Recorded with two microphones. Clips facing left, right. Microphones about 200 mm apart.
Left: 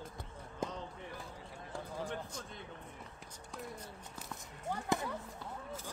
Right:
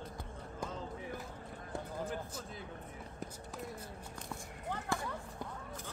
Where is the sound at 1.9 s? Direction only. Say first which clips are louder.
Left 1 dB; 5° right (ahead or behind).